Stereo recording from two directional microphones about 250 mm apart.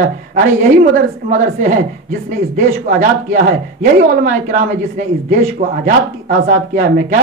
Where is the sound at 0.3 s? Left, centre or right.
Right.